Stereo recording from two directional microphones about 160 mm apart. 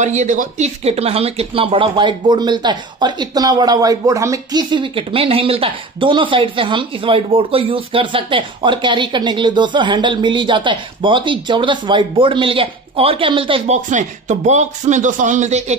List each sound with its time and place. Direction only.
0.0 s speech: 50° right (ahead or behind); by 13.7 s 35° right (ahead or behind)
13.8 s speech: 50° right (ahead or behind)